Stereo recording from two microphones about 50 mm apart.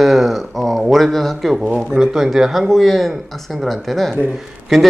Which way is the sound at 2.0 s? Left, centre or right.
Centre.